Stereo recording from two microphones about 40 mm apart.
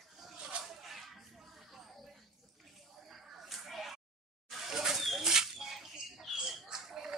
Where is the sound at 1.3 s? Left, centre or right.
Centre.